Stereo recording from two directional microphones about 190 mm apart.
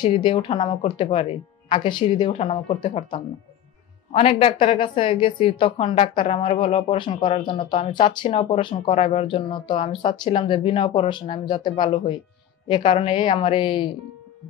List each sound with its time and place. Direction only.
0.0 s a woman's voice: 25° left (ahead or behind)